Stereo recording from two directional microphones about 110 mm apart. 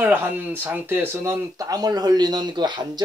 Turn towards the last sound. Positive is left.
turn(degrees=-40)  # may be behind; listen again after turning